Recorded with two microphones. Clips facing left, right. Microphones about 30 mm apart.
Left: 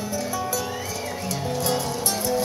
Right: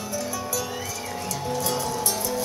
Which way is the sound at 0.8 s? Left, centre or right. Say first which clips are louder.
Left 2 dB; left.